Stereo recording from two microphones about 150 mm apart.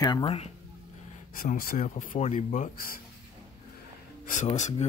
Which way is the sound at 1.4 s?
65° left (ahead or behind).